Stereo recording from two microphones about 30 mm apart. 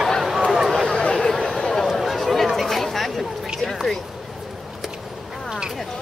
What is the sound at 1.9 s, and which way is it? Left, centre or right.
Chatter, centre.